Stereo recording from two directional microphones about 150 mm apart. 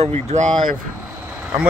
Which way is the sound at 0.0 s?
45° right (ahead or behind).